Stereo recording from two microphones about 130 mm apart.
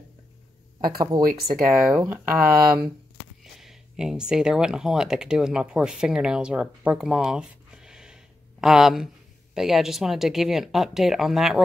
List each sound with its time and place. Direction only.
0.7 s speech: 35° right (ahead or behind)
1.7 s speech: centre (ahead or behind)
2.0 s speech: 15° right (ahead or behind)
3.5 s speech: 5° right (ahead or behind)